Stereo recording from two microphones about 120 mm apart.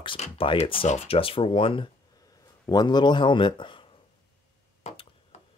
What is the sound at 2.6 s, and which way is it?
Speech, 35° left (ahead or behind).